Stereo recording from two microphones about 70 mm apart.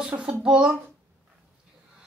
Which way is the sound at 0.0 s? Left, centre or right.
Centre.